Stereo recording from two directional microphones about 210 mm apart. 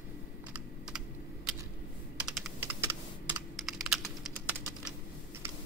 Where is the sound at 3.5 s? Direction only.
Centre (ahead or behind).